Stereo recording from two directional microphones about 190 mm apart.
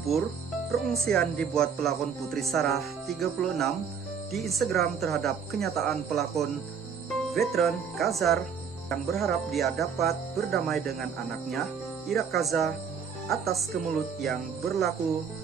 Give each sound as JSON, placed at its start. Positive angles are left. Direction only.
{"t": 0.7, "sound": "speech", "side_deg": 0}